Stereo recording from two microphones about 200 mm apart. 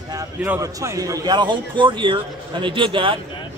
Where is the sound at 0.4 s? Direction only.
15° right (ahead or behind).